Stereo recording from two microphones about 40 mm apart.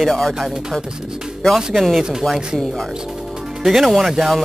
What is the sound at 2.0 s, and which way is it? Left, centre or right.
Speech, centre.